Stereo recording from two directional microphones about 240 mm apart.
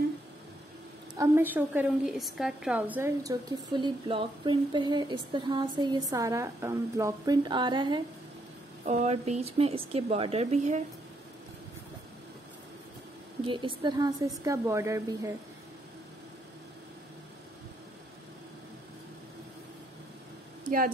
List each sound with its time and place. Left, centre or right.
1.1 s a woman's voice: centre; by 10.8 s right
13.5 s a woman's voice: centre